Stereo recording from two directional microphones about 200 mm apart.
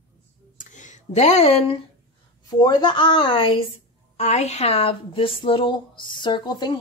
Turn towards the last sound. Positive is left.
turn(degrees=20)  # may be behind; listen again after turning